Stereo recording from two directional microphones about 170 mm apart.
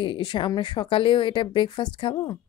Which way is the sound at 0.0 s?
25° left (ahead or behind).